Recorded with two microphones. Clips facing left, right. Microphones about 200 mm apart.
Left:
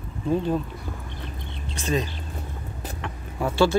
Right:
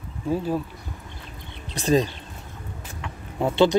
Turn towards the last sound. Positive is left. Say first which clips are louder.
# right 2 dB
turn(degrees=-20)  # may be behind; listen again after turning